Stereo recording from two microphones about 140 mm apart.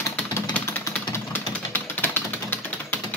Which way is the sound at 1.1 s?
15° left (ahead or behind).